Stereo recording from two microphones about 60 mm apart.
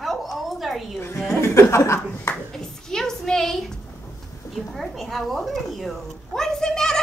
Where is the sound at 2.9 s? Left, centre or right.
Centre.